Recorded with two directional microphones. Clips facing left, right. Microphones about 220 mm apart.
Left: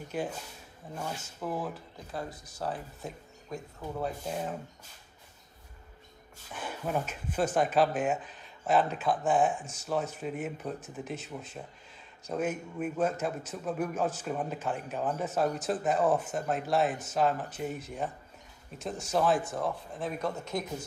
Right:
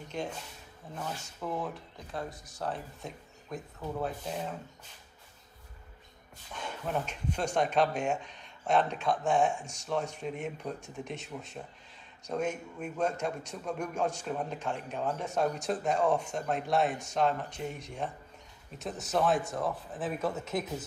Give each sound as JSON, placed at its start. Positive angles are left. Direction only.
{"t": 0.1, "sound": "a man's voice", "side_deg": 5}
{"t": 6.5, "sound": "a man's voice", "side_deg": 5}